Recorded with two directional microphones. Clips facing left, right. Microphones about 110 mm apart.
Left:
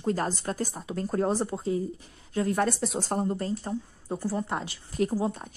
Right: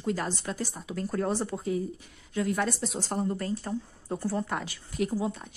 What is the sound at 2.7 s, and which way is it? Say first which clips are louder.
Speech: left 3 dB; 50° left (ahead or behind).